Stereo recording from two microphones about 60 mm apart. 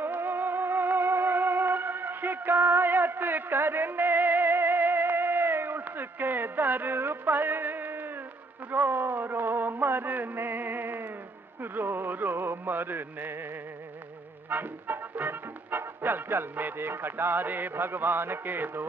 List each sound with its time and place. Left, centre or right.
0.0 s music: right
14.5 s speech: right